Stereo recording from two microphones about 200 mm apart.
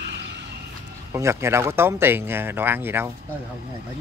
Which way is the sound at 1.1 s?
15° right (ahead or behind).